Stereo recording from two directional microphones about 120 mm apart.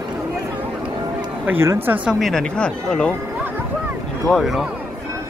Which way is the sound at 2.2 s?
5° left (ahead or behind).